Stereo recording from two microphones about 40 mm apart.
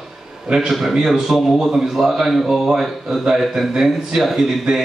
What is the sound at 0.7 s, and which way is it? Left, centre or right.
A man's voice, centre.